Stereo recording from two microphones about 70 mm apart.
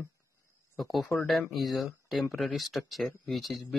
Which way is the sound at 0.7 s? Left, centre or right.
Centre.